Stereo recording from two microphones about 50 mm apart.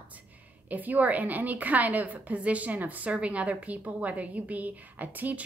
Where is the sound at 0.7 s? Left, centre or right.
Right.